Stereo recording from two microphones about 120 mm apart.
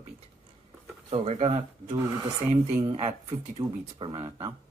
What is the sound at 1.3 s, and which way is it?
Speech, 70° right (ahead or behind).